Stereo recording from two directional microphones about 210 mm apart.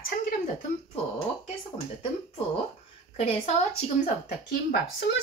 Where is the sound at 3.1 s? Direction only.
30° left (ahead or behind).